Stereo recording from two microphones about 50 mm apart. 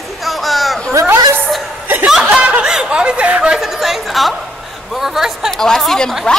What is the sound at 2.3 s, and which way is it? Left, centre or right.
Snicker, right.